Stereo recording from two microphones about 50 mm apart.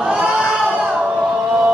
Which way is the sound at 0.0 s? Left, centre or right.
Centre.